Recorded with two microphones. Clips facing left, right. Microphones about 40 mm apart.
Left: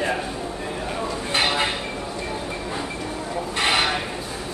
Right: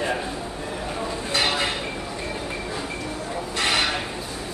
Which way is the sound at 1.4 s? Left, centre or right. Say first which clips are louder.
Left 2 dB; centre.